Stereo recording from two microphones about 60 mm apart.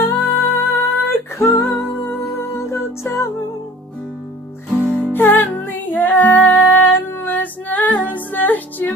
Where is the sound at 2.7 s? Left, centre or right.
Left.